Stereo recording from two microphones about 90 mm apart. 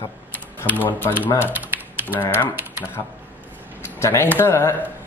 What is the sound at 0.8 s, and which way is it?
Speech, 20° left (ahead or behind).